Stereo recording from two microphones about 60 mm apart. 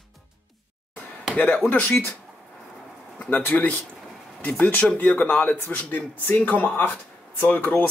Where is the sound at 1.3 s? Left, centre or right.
Left.